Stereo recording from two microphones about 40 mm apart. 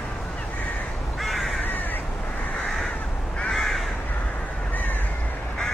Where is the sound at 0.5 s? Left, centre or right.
Left.